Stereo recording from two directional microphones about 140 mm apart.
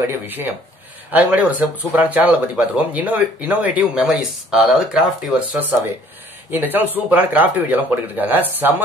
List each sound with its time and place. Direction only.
0.0 s speech: 15° right (ahead or behind)